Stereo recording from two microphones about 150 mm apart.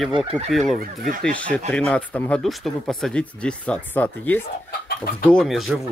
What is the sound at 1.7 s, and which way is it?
Speech, 5° left (ahead or behind).